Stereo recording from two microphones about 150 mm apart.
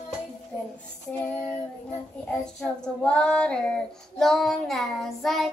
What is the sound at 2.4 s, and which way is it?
Child singing, 5° left (ahead or behind).